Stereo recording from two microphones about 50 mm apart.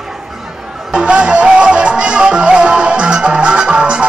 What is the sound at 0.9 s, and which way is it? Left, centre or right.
Music, centre.